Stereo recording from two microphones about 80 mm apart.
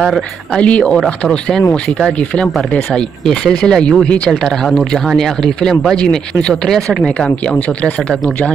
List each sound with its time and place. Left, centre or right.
0.0 s speech: centre